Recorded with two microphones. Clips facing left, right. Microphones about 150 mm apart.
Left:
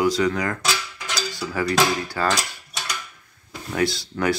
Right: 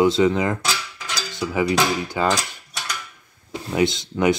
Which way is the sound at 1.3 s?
20° right (ahead or behind).